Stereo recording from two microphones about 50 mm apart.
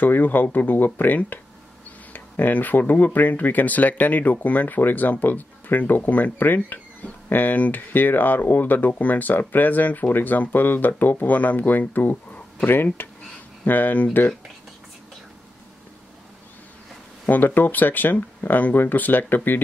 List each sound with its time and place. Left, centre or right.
0.0 s speech: left
17.6 s speech: left